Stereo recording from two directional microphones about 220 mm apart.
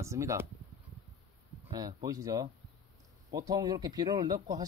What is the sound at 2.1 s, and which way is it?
Speech, 15° right (ahead or behind).